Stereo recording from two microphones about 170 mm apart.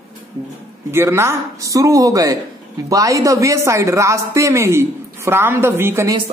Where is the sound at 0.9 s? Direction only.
15° right (ahead or behind).